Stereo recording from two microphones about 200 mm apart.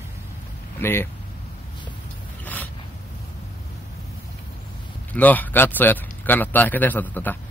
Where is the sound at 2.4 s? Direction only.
10° left (ahead or behind).